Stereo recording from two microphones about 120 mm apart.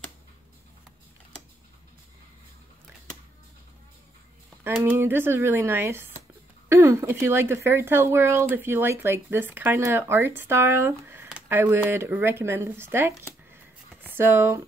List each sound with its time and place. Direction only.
4.8 s speech: 20° right (ahead or behind)